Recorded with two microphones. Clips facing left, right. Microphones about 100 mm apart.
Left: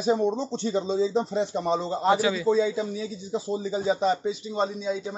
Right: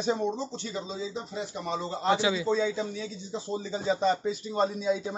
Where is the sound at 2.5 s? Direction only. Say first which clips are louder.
Left 4 dB; 10° left (ahead or behind).